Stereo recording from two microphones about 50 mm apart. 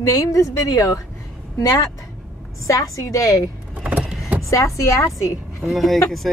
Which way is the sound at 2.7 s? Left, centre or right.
Left.